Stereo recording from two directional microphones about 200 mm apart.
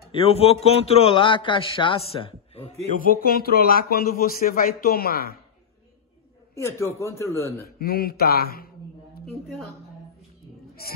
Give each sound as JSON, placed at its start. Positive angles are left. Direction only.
{"t": 0.1, "sound": "a man's voice", "side_deg": 30}
{"t": 3.0, "sound": "speech", "side_deg": 45}
{"t": 6.5, "sound": "a man's voice", "side_deg": 15}
{"t": 7.8, "sound": "speech", "side_deg": 50}